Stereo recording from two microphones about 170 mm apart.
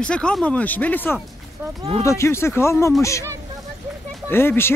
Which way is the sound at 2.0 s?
15° left (ahead or behind).